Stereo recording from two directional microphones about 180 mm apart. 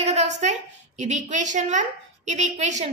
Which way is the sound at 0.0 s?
40° right (ahead or behind).